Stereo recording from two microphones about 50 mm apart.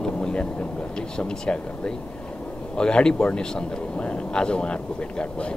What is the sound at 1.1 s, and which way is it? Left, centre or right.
Speech, centre.